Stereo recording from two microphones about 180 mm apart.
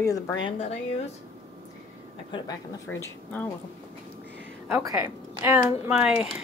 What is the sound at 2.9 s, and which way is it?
Speech, 10° left (ahead or behind).